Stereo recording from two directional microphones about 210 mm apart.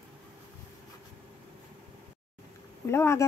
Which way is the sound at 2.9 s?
15° left (ahead or behind).